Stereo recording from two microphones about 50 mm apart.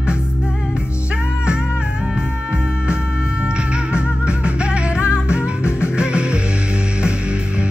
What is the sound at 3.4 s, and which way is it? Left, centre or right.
Music, right.